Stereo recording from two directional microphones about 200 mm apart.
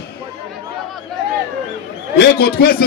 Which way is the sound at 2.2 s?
50° left (ahead or behind).